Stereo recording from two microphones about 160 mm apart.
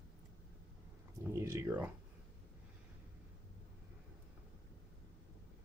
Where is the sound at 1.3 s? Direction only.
20° right (ahead or behind).